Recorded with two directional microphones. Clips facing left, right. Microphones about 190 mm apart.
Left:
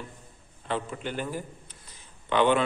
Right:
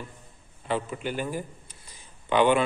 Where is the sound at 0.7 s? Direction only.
10° right (ahead or behind).